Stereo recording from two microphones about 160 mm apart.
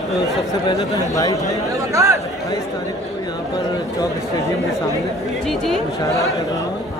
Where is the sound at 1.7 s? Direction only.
20° right (ahead or behind).